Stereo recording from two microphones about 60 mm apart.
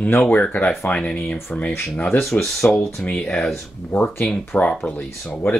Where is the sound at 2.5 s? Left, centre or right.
Centre.